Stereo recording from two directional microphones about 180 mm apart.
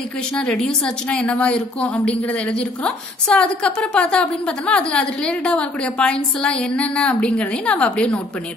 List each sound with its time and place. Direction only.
0.4 s a woman's voice: 5° left (ahead or behind)